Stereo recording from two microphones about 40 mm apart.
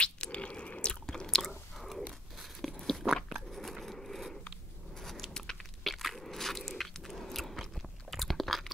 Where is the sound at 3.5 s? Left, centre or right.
Centre.